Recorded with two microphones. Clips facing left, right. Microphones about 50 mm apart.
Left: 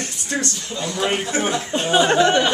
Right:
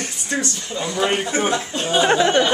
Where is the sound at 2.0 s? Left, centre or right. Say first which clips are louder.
Even; centre.